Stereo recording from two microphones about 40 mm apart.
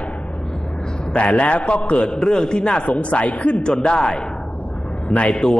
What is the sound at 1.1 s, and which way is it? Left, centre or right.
A man's voice, left.